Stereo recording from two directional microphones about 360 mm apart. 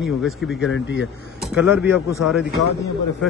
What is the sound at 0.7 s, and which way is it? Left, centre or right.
Speech, left.